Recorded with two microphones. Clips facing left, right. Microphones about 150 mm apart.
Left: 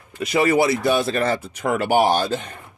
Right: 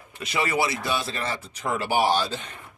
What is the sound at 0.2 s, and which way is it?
Speech, 45° left (ahead or behind).